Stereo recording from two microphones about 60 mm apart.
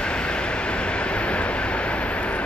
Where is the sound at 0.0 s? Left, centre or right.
Centre.